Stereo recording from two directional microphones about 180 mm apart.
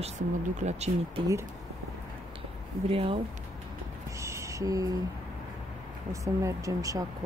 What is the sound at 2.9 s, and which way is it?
Speech, 30° right (ahead or behind).